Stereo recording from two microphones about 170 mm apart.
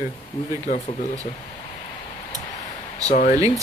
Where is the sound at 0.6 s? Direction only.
40° left (ahead or behind).